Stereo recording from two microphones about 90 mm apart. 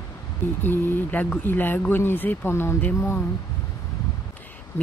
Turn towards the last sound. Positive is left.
turn(degrees=30)  # may be behind; listen again after turning